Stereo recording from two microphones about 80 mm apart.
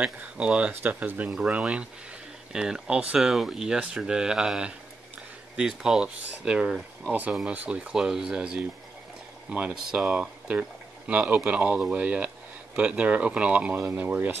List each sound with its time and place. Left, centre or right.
0.0 s speech: centre
10.1 s speech: centre